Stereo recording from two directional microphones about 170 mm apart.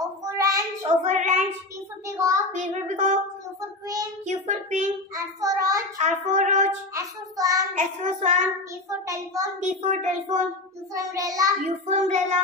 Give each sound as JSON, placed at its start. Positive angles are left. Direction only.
{"t": 0.0, "sound": "child singing", "side_deg": -20}
{"t": 1.0, "sound": "speech", "side_deg": -45}
{"t": 2.0, "sound": "a child's voice", "side_deg": -15}
{"t": 2.5, "sound": "speech", "side_deg": -45}
{"t": 4.3, "sound": "speech", "side_deg": -45}
{"t": 5.1, "sound": "child singing", "side_deg": -20}
{"t": 5.9, "sound": "speech", "side_deg": -45}
{"t": 6.9, "sound": "child singing", "side_deg": -20}
{"t": 7.7, "sound": "speech", "side_deg": -45}
{"t": 9.0, "sound": "child singing", "side_deg": -20}
{"t": 9.6, "sound": "speech", "side_deg": -45}
{"t": 11.0, "sound": "child singing", "side_deg": -20}
{"t": 11.6, "sound": "speech", "side_deg": -45}